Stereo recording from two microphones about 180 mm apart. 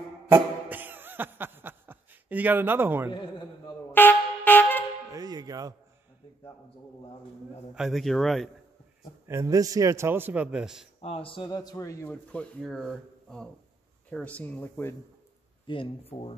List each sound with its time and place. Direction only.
0.3 s a sound: 10° right (ahead or behind)
3.1 s a man's voice: 25° left (ahead or behind)
3.9 s music: 10° left (ahead or behind)
5.1 s music: 20° right (ahead or behind)
7.7 s a man's voice: centre (ahead or behind)
9.3 s a man's voice: 15° right (ahead or behind)
11.0 s speech: 35° left (ahead or behind); by 15.0 s 10° left (ahead or behind)
15.6 s speech: 30° left (ahead or behind)